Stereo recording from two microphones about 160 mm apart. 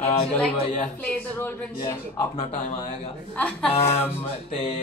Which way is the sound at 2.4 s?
40° left (ahead or behind).